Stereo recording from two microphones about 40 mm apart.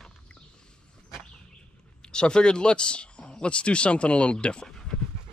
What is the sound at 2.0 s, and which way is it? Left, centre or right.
Speech, left.